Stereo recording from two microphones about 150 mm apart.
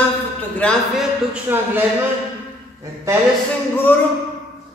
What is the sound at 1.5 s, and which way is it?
Speech, 15° right (ahead or behind).